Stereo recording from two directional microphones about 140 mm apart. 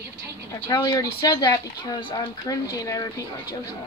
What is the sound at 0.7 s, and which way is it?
Speech, 30° left (ahead or behind).